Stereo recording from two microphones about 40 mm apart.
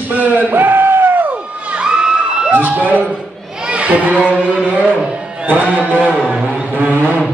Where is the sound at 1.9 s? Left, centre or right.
Centre.